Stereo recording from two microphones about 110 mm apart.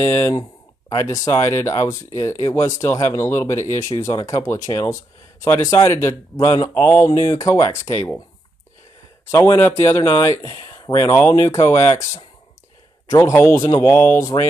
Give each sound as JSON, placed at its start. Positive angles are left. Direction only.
{"t": 0.0, "sound": "speech", "side_deg": 25}
{"t": 7.1, "sound": "speech", "side_deg": 35}
{"t": 9.3, "sound": "speech", "side_deg": 25}